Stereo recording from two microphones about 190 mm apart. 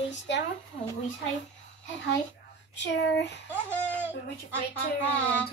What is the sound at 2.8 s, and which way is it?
Speech, 65° left (ahead or behind).